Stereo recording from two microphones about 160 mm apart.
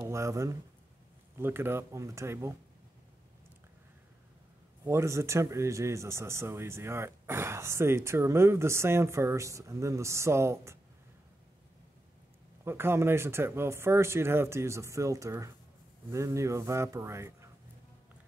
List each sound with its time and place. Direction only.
0.1 s speech: 20° right (ahead or behind)
4.8 s speech: 15° right (ahead or behind)
12.6 s speech: 15° right (ahead or behind)